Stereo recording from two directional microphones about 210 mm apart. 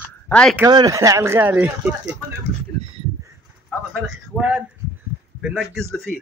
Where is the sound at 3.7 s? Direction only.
5° right (ahead or behind).